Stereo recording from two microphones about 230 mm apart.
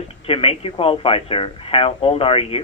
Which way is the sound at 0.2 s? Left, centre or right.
Left.